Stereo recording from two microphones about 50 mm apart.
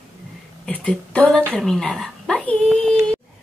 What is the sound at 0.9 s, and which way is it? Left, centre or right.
Speech, left.